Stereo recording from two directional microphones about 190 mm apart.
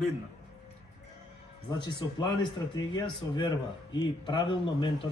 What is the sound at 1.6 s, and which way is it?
Speech, 25° left (ahead or behind).